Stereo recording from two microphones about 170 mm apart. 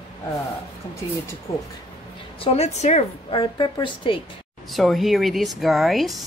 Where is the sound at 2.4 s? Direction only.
40° left (ahead or behind).